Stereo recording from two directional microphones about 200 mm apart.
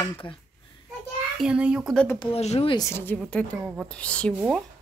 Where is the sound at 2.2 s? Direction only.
30° left (ahead or behind).